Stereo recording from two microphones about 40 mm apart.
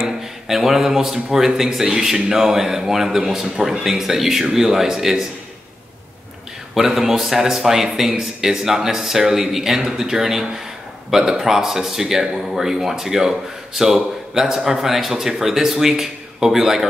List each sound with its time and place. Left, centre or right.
0.0 s a man's voice: centre
6.7 s speech: centre